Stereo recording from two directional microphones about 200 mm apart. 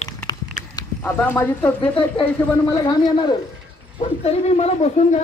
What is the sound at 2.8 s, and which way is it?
Speech, 20° left (ahead or behind).